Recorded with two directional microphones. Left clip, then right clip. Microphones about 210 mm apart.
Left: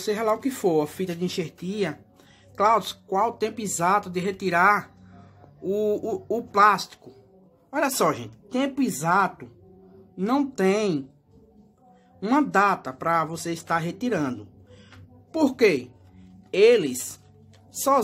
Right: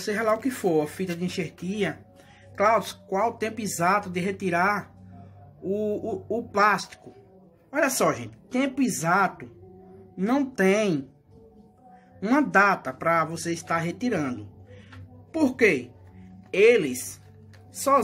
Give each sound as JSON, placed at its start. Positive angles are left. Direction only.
{"t": 0.0, "sound": "speech", "side_deg": 10}
{"t": 12.2, "sound": "speech", "side_deg": 10}